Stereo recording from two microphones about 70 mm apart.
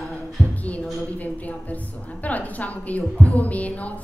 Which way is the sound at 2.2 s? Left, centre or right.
Left.